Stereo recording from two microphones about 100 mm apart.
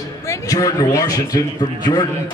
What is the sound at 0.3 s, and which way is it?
A man's voice, 35° left (ahead or behind).